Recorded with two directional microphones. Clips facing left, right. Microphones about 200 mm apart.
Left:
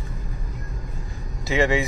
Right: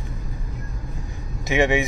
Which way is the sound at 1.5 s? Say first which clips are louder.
Right 1 dB; 20° right (ahead or behind).